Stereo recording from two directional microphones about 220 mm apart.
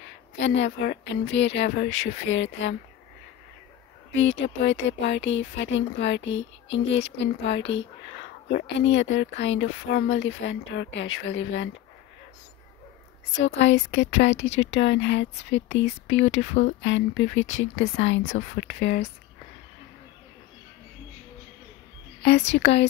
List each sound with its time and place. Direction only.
1.0 s speech: 55° left (ahead or behind)
4.1 s speech: 55° left (ahead or behind)
13.4 s speech: 55° left (ahead or behind)
22.5 s speech: 50° left (ahead or behind)